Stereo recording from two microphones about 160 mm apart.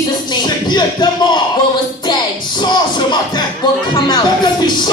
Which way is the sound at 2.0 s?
25° left (ahead or behind).